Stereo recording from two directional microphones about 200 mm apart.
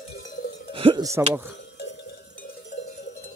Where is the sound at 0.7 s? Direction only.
25° right (ahead or behind).